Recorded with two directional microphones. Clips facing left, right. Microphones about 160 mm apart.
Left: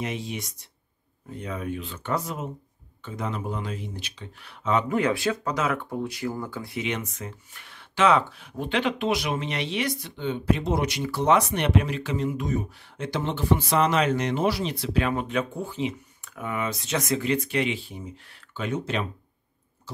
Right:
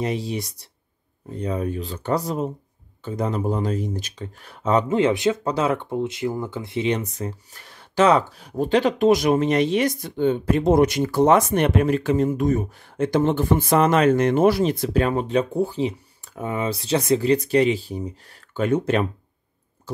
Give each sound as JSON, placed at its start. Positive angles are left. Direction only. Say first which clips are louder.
{"t": 0.0, "sound": "speech", "louder": "right 6 dB", "side_deg": -35}
{"t": 4.8, "sound": "speech", "louder": "right 5 dB", "side_deg": -20}